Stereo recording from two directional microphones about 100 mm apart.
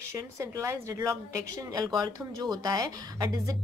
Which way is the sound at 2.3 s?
40° right (ahead or behind).